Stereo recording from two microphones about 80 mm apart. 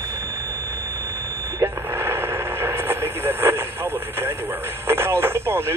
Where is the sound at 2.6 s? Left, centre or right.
Right.